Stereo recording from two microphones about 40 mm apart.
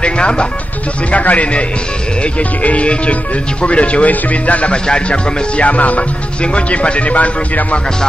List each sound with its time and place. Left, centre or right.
0.0 s speech: left
2.6 s speech: left
4.8 s speech: left